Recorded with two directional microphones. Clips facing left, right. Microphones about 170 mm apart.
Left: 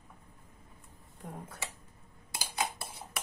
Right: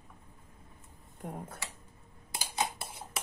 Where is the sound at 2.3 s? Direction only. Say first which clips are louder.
Right 1 dB; 25° right (ahead or behind).